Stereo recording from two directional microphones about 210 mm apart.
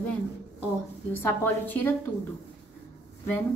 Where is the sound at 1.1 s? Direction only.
10° left (ahead or behind).